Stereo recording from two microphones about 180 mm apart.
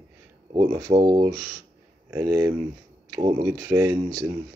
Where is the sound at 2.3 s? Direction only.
10° right (ahead or behind).